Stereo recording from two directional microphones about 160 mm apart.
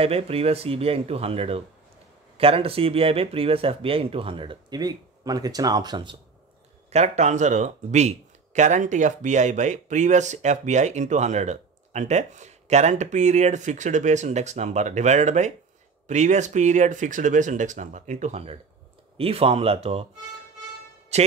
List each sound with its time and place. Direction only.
0.0 s speech: 40° right (ahead or behind)
6.9 s speech: 45° right (ahead or behind)
21.1 s speech: 45° right (ahead or behind)